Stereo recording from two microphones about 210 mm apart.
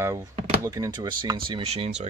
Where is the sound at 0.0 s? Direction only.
15° right (ahead or behind).